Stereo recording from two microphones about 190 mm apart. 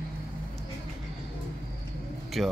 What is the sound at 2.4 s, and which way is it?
Speech, centre (ahead or behind).